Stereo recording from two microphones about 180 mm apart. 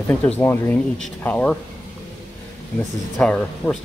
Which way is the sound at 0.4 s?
10° left (ahead or behind).